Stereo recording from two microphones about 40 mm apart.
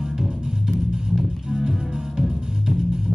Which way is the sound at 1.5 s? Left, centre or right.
Centre.